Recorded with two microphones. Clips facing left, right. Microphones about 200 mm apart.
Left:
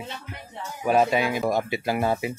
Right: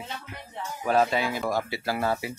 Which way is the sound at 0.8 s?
15° left (ahead or behind).